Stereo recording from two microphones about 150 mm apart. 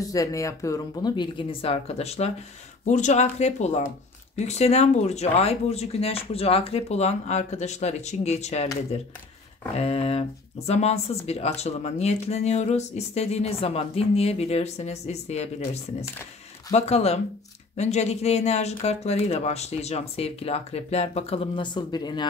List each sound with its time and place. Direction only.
0.0 s speech: 20° left (ahead or behind); by 8.6 s 45° left (ahead or behind)
9.8 s speech: 45° left (ahead or behind)